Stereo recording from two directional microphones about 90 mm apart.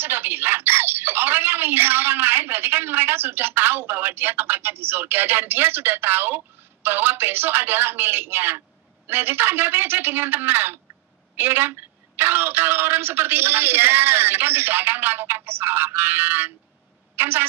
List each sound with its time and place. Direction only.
0.0 s a woman's voice: 25° right (ahead or behind)